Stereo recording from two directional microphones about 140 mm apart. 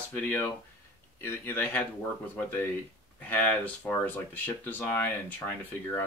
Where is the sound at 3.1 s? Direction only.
10° left (ahead or behind).